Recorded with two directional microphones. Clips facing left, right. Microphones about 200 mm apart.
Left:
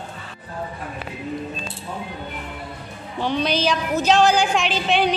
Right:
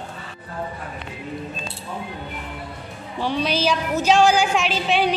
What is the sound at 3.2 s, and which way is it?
A woman's voice, 5° right (ahead or behind).